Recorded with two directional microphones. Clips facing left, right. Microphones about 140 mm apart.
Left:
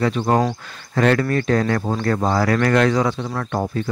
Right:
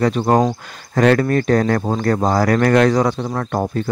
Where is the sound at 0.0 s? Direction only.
40° right (ahead or behind).